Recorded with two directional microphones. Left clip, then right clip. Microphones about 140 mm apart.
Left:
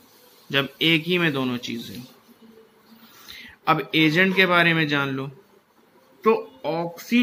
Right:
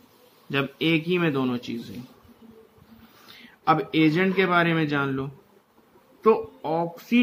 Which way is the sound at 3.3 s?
15° left (ahead or behind).